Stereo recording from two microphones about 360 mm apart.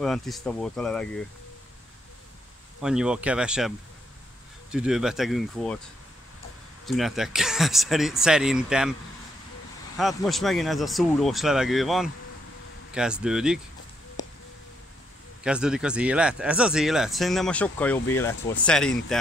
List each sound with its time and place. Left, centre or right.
0.0 s speech: centre
2.8 s speech: centre
6.9 s speech: centre
9.9 s speech: centre
14.2 s a sound: centre
15.4 s speech: centre